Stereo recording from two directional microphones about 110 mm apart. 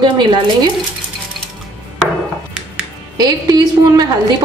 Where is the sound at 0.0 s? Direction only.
45° right (ahead or behind).